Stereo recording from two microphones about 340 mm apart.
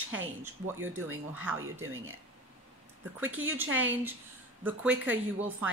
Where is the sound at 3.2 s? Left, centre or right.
Right.